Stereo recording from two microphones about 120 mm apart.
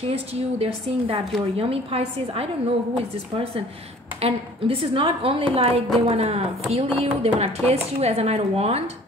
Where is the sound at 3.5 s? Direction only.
50° right (ahead or behind).